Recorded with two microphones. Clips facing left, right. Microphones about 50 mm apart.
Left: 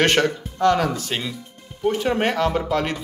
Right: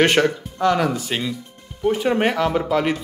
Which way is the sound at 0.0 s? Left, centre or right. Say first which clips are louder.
Right 2 dB; centre.